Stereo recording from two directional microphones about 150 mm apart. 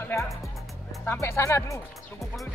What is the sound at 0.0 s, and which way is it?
Music, 20° left (ahead or behind).